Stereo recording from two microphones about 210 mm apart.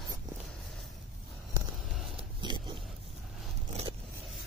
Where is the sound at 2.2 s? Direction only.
20° right (ahead or behind).